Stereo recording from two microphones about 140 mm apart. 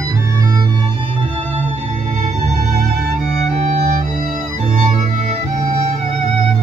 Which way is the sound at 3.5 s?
50° right (ahead or behind).